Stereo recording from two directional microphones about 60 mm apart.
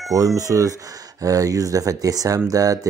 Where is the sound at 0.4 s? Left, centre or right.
Right.